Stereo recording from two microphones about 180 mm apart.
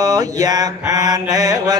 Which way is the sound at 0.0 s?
20° right (ahead or behind).